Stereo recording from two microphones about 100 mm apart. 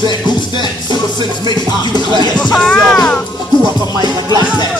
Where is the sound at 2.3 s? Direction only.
10° left (ahead or behind).